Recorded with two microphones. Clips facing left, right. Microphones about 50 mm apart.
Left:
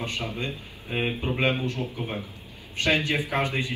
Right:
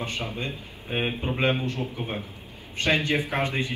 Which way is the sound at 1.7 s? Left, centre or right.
Right.